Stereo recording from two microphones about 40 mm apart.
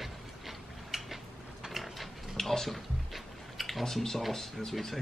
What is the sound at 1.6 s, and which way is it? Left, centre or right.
Ratchet, centre.